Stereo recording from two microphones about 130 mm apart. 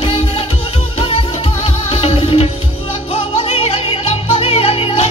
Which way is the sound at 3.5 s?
45° left (ahead or behind).